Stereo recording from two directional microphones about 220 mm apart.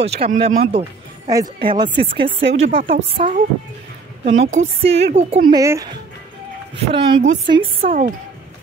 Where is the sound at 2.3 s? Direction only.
55° right (ahead or behind).